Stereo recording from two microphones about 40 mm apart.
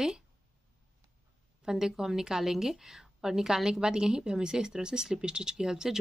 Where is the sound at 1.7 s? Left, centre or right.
Centre.